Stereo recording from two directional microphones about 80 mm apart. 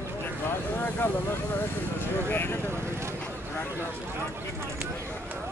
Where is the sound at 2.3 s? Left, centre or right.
Left.